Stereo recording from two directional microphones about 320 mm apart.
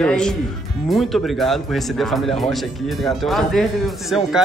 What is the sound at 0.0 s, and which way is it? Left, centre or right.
Speech, centre.